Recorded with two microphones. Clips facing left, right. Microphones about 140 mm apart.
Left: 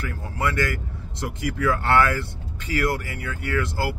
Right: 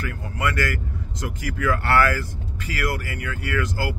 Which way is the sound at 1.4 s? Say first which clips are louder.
Left 1 dB; 25° left (ahead or behind).